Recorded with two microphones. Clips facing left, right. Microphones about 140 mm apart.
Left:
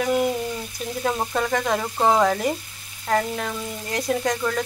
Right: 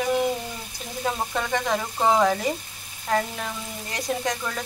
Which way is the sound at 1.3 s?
5° left (ahead or behind).